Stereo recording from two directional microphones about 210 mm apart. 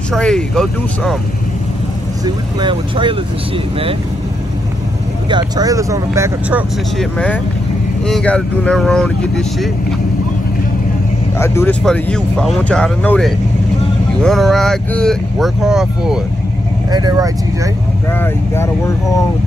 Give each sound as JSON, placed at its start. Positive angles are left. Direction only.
{"t": 0.1, "sound": "speech", "side_deg": 0}
{"t": 2.2, "sound": "speech", "side_deg": -20}
{"t": 5.3, "sound": "speech", "side_deg": -15}
{"t": 7.0, "sound": "speech", "side_deg": 5}
{"t": 11.3, "sound": "speech", "side_deg": 10}
{"t": 16.9, "sound": "speech", "side_deg": -20}
{"t": 18.2, "sound": "speech", "side_deg": 10}